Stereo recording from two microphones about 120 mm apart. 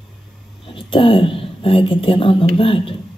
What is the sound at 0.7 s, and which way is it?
A woman's voice, 45° left (ahead or behind).